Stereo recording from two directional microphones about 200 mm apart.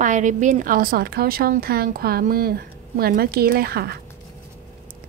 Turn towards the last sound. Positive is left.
turn(degrees=-50)  # may be behind; listen again after turning